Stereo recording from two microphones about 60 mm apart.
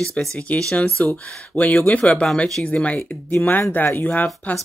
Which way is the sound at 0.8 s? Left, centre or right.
Left.